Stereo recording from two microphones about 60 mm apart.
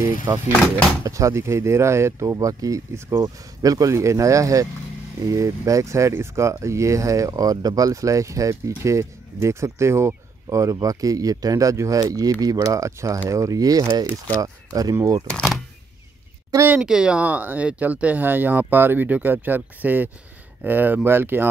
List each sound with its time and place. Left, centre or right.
0.3 s speech: right
2.3 s speech: right
2.9 s speech: right
3.6 s speech: right
12.5 s speech: right
15.0 s speech: right
16.8 s speech: centre; by 21.5 s right